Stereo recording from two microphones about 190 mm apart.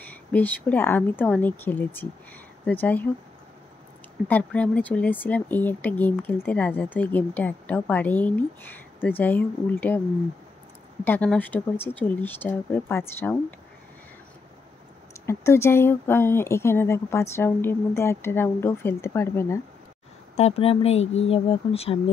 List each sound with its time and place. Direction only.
0.0 s speech: 10° left (ahead or behind)
4.3 s speech: 5° left (ahead or behind)
11.1 s speech: 10° left (ahead or behind)
15.2 s speech: 15° left (ahead or behind)
20.3 s speech: 30° left (ahead or behind)